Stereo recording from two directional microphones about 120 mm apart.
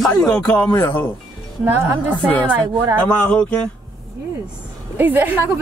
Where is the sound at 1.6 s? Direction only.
15° right (ahead or behind).